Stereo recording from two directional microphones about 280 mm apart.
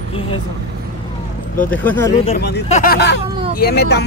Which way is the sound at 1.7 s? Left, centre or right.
Centre.